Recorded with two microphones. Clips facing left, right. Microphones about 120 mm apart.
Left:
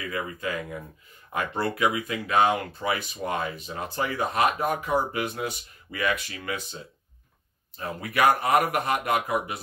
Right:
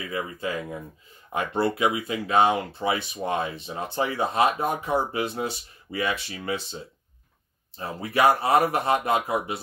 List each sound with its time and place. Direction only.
0.1 s speech: 25° right (ahead or behind)